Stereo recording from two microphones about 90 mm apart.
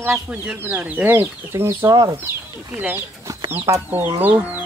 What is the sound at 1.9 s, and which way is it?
Speech, 50° right (ahead or behind).